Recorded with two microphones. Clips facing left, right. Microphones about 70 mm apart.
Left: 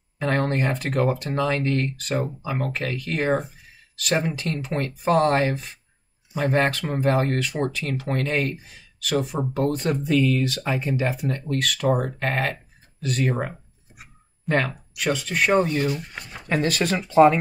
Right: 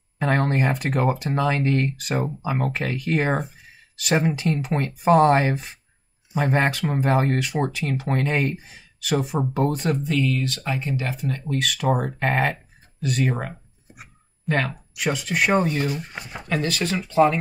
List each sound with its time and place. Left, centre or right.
0.2 s speech: centre
10.0 s speech: centre
11.3 s speech: centre
12.2 s speech: centre
13.0 s speech: centre
14.4 s a sound: centre
15.0 s speech: centre